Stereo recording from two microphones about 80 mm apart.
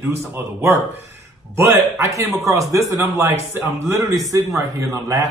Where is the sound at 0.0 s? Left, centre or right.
Right.